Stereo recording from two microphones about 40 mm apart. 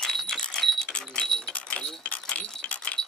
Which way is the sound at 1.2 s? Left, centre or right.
Left.